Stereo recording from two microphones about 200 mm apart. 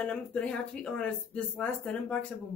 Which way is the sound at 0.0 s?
5° left (ahead or behind).